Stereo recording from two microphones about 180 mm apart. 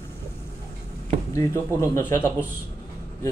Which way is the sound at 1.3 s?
15° left (ahead or behind).